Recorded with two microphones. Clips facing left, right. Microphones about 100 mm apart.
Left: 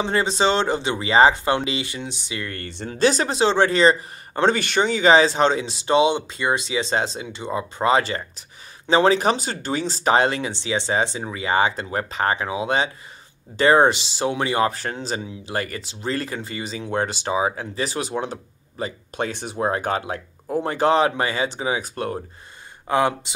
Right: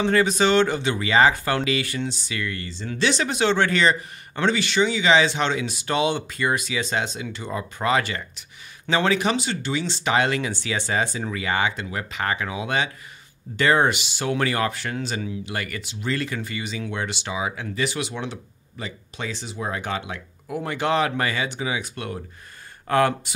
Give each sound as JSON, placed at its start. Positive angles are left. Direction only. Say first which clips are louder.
{"t": 0.0, "sound": "speech", "louder": "right 1 dB", "side_deg": 25}
{"t": 2.4, "sound": "speech", "louder": "even", "side_deg": 50}
{"t": 2.9, "sound": "speech", "louder": "left 4 dB", "side_deg": 40}
{"t": 4.6, "sound": "speech", "louder": "left 1 dB", "side_deg": 50}
{"t": 14.7, "sound": "speech", "louder": "left 1 dB", "side_deg": 35}
{"t": 22.8, "sound": "speech", "louder": "even", "side_deg": 15}